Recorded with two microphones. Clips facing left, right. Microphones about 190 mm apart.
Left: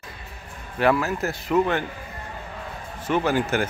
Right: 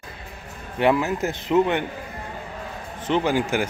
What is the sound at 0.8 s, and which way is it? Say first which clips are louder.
Speech: right 1 dB; 20° right (ahead or behind).